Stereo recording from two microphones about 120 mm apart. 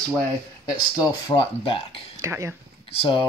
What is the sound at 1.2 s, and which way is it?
Speech, 40° left (ahead or behind).